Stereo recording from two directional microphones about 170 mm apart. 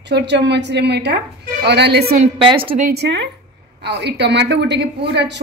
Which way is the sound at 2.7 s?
65° right (ahead or behind).